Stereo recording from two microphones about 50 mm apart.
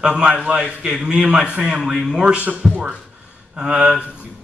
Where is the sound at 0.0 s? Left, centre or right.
Centre.